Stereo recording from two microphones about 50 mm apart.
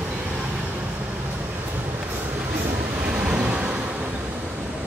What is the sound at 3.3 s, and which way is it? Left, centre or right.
Vehicle, right.